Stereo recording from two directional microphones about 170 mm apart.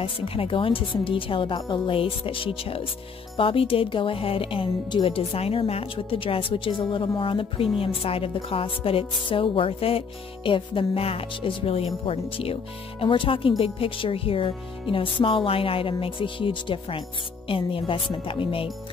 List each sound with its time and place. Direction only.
0.0 s speech: 35° left (ahead or behind)